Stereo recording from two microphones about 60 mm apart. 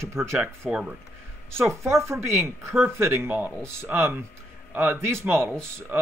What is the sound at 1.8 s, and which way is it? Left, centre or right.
Speech, right.